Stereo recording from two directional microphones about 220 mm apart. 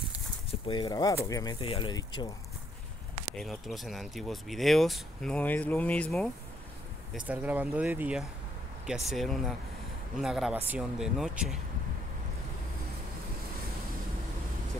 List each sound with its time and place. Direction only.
0.7 s speech: 20° left (ahead or behind)
3.3 s speech: centre (ahead or behind)
7.2 s speech: 5° right (ahead or behind)